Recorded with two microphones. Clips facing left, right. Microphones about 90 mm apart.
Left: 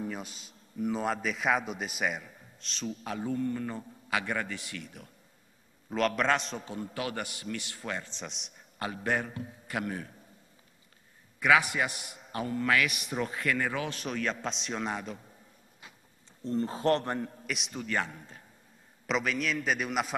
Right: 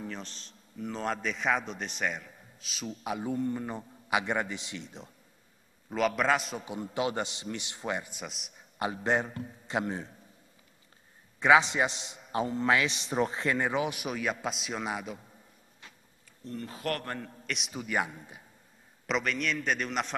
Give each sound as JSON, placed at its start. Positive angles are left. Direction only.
{"t": 0.0, "sound": "a man's voice", "side_deg": 10}
{"t": 5.9, "sound": "a man's voice", "side_deg": -5}
{"t": 6.6, "sound": "a man's voice", "side_deg": -20}
{"t": 8.7, "sound": "a man's voice", "side_deg": -20}
{"t": 11.3, "sound": "a man's voice", "side_deg": -25}
{"t": 16.4, "sound": "a man's voice", "side_deg": 30}
{"t": 17.5, "sound": "a man's voice", "side_deg": 0}
{"t": 19.0, "sound": "a man's voice", "side_deg": 0}